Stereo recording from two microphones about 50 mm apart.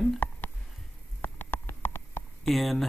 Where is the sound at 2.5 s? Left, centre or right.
Centre.